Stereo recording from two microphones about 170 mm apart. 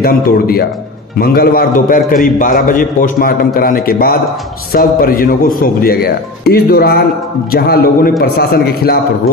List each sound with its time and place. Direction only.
0.0 s speech: 60° left (ahead or behind)